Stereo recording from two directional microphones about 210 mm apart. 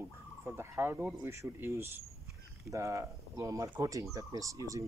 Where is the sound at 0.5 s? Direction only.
10° right (ahead or behind).